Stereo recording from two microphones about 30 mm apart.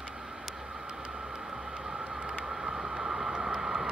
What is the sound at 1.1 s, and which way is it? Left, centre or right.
Vehicle, right.